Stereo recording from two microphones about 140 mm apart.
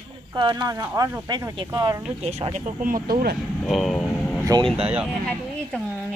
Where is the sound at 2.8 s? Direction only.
90° right.